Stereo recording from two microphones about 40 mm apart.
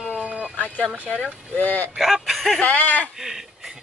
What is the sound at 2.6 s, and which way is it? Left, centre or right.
Speech, left.